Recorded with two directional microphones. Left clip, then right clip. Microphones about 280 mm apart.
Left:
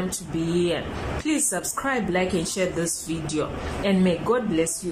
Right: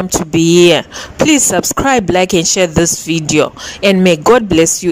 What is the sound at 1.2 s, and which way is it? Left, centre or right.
Speech, right.